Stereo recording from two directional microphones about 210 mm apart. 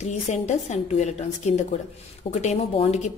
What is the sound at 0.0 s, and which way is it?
A woman's voice, 35° left (ahead or behind).